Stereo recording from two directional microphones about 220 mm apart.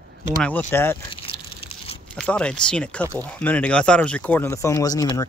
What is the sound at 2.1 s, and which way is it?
Speech, 5° left (ahead or behind).